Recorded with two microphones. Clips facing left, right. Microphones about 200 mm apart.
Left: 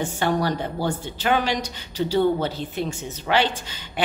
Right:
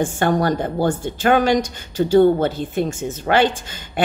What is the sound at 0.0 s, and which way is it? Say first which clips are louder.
A woman's voice: right 5 dB; 50° right (ahead or behind).